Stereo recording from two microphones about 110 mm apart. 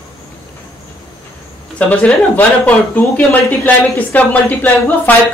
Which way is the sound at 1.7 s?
15° left (ahead or behind).